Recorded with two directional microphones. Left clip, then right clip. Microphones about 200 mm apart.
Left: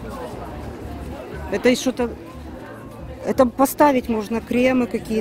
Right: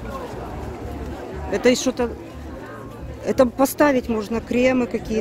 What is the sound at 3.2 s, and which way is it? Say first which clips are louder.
A woman's voice: even; 5° left (ahead or behind).